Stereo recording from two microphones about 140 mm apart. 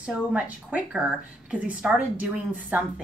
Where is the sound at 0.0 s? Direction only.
5° right (ahead or behind).